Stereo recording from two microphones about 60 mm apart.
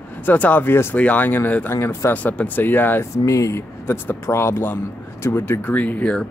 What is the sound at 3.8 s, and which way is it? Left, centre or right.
Speech, left.